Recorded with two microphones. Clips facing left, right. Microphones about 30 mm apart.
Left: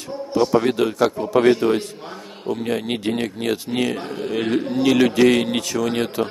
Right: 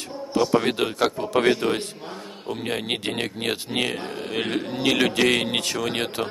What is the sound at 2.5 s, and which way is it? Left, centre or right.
A man's voice, right.